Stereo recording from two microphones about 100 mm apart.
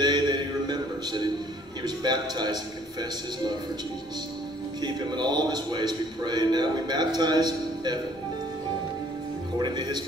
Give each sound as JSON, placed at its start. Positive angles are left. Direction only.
{"t": 0.0, "sound": "music", "side_deg": -45}
{"t": 1.8, "sound": "a man's voice", "side_deg": -45}
{"t": 4.8, "sound": "a man's voice", "side_deg": -45}
{"t": 9.6, "sound": "a man's voice", "side_deg": -45}